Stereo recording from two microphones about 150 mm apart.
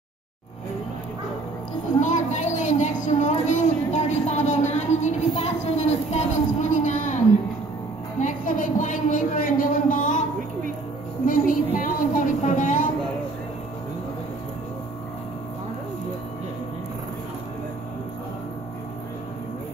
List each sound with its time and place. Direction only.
2.0 s a woman's voice: 55° left (ahead or behind)
8.2 s a woman's voice: 60° left (ahead or behind)
11.2 s a sound: 70° left (ahead or behind)